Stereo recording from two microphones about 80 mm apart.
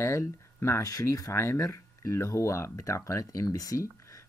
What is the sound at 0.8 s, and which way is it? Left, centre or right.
Speech, left.